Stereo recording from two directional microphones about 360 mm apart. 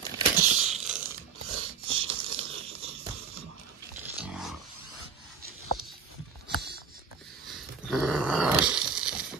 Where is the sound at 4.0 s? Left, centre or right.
Centre.